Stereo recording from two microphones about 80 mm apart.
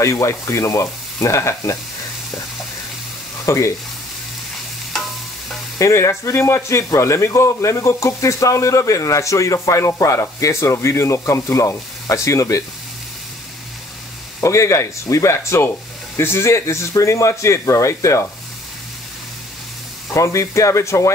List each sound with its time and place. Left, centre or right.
0.0 s speech: left
3.4 s speech: left
5.8 s speech: left
14.4 s speech: left
20.1 s speech: left